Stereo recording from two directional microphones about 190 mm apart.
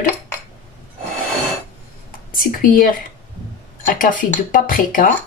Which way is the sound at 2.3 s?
50° left (ahead or behind).